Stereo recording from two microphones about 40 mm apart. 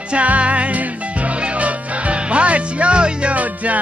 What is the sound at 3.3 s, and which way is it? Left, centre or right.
Music, right.